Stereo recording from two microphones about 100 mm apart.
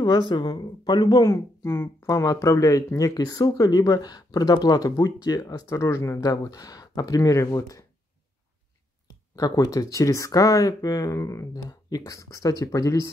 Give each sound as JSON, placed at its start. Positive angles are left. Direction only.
{"t": 0.0, "sound": "speech", "side_deg": 50}
{"t": 6.3, "sound": "speech", "side_deg": 40}
{"t": 9.3, "sound": "speech", "side_deg": 35}